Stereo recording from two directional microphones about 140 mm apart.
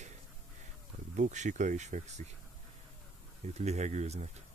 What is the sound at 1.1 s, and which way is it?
Speech, 60° right (ahead or behind).